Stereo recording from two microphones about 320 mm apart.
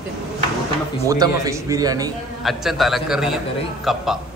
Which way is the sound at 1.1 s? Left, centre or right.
Centre.